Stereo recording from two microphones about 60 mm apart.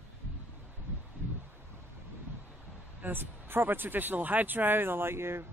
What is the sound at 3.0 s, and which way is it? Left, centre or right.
Speech, right.